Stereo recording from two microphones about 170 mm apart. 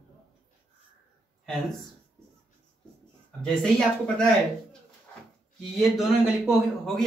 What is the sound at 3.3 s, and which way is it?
Speech, 5° left (ahead or behind).